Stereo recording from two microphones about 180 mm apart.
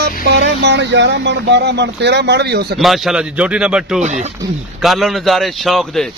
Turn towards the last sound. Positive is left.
turn(degrees=0)  # may be behind; listen again after turning